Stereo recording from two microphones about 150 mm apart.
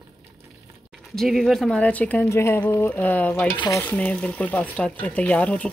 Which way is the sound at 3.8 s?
10° left (ahead or behind).